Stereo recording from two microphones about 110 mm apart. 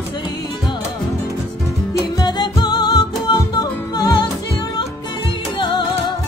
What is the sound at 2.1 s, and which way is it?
Music, 40° left (ahead or behind).